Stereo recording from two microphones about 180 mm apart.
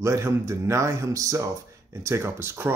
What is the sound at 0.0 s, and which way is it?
Speech, 15° right (ahead or behind).